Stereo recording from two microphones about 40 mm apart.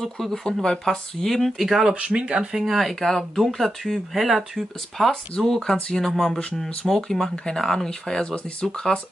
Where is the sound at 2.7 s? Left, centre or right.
Centre.